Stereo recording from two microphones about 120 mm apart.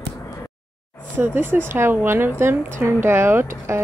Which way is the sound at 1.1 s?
15° right (ahead or behind).